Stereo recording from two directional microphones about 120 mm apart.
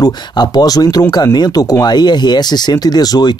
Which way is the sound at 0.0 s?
35° left (ahead or behind).